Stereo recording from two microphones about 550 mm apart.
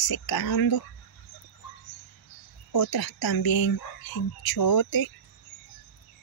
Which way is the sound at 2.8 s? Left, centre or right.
Left.